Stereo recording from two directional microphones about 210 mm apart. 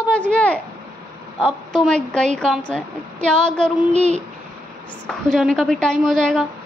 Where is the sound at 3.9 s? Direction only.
30° right (ahead or behind).